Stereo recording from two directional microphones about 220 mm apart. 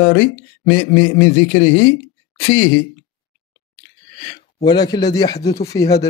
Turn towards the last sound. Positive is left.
turn(degrees=15)  # may be behind; listen again after turning